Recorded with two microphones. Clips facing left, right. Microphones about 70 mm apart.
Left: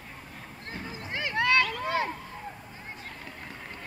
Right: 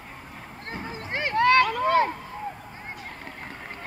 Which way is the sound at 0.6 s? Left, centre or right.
Right.